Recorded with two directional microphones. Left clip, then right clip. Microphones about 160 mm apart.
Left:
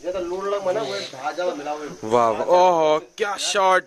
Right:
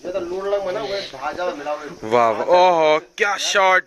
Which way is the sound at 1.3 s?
35° right (ahead or behind).